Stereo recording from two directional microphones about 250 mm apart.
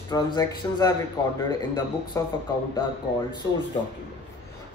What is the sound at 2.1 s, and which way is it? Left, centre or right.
Speech, centre.